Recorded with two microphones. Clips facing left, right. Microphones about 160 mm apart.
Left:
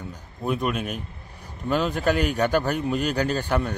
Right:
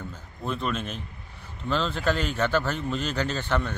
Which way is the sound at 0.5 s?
10° left (ahead or behind).